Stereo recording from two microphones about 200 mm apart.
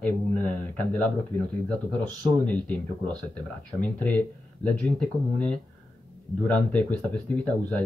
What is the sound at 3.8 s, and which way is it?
Speech, 10° left (ahead or behind).